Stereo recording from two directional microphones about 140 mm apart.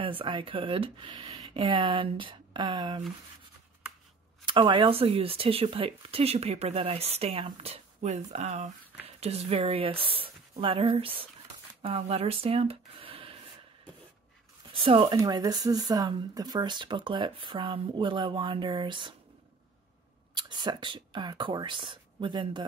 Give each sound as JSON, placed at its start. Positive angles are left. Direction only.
{"t": 0.0, "sound": "speech", "side_deg": -35}
{"t": 4.5, "sound": "speech", "side_deg": -35}
{"t": 14.7, "sound": "speech", "side_deg": -40}
{"t": 15.1, "sound": "speech", "side_deg": -25}
{"t": 20.3, "sound": "speech", "side_deg": -30}